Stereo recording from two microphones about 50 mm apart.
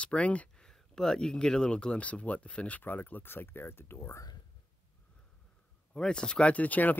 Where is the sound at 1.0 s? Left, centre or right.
Centre.